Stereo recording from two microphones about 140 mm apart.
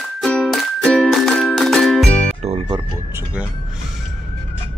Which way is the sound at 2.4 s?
45° right (ahead or behind).